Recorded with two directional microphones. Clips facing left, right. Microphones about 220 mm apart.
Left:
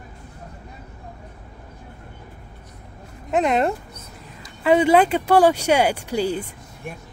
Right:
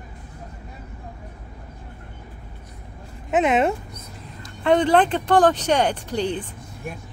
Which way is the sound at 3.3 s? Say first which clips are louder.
Right 1 dB; centre (ahead or behind).